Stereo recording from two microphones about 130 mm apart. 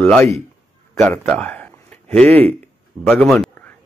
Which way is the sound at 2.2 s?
50° right (ahead or behind).